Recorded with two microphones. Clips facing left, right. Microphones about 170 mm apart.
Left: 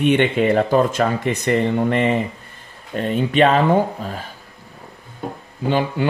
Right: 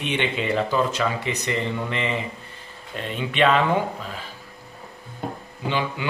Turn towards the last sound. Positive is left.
turn(degrees=45)  # may be behind; listen again after turning